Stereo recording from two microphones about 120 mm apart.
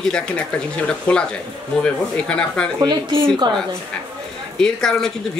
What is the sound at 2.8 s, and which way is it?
Speech, 40° right (ahead or behind).